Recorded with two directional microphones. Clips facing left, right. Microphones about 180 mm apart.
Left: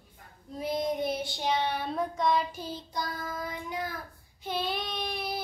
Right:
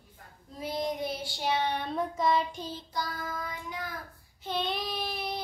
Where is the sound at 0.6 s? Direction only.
20° left (ahead or behind).